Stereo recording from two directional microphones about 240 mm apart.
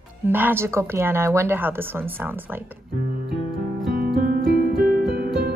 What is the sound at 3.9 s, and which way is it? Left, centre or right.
Music, right.